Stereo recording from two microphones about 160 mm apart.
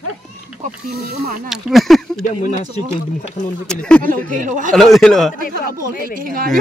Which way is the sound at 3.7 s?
5° left (ahead or behind).